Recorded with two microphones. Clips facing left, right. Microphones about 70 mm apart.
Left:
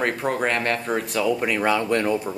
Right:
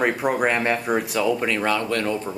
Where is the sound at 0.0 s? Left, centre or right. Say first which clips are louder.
Right 2 dB; centre.